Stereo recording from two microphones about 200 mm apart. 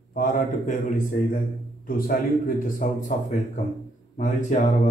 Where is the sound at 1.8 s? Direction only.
45° left (ahead or behind).